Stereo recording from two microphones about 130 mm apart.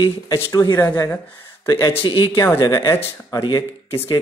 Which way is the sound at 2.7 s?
25° left (ahead or behind).